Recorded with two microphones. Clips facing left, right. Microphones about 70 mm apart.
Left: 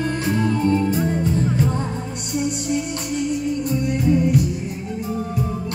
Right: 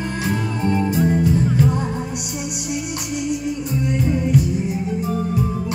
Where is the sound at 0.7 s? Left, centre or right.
Right.